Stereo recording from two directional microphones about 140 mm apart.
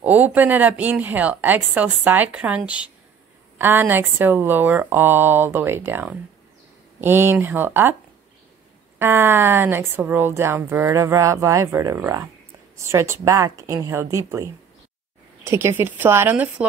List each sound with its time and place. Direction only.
0.0 s a woman's voice: 10° right (ahead or behind)
8.9 s a woman's voice: 15° right (ahead or behind)